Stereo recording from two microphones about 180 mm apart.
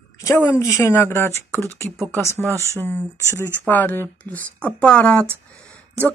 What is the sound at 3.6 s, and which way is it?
Speech, 10° left (ahead or behind).